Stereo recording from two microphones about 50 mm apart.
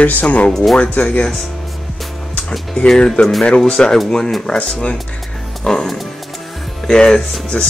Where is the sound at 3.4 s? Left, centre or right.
Centre.